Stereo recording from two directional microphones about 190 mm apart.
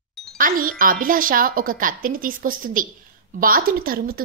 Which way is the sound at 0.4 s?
45° right (ahead or behind).